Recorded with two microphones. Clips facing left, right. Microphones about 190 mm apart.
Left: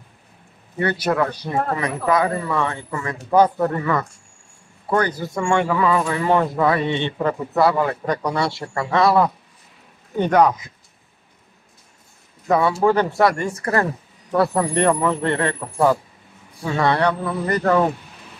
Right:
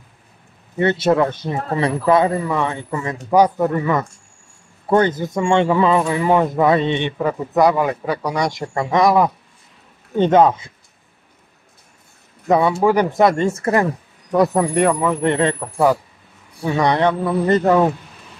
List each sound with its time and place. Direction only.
0.7 s speech: 25° right (ahead or behind)
12.4 s speech: 20° right (ahead or behind)